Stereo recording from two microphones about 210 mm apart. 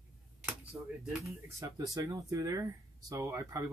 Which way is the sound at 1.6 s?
15° right (ahead or behind).